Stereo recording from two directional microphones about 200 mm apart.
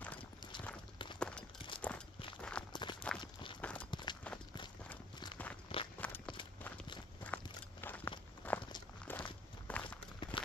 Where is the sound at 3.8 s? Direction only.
20° left (ahead or behind).